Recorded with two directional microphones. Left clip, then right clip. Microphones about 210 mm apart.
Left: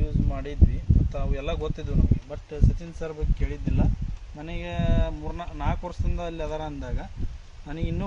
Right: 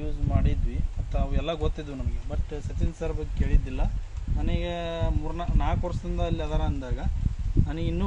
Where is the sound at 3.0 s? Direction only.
15° left (ahead or behind).